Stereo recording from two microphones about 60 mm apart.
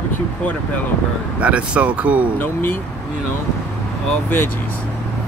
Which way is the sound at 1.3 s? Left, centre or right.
Right.